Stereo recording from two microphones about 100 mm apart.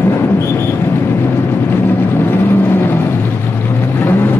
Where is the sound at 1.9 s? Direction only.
20° left (ahead or behind).